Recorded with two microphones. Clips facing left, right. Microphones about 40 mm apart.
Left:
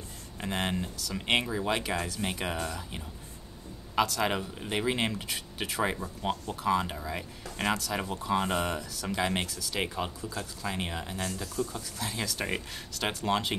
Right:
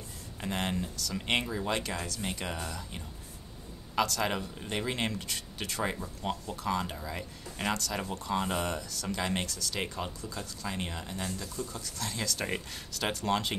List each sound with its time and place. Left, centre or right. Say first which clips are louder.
0.4 s speech: left 1 dB; centre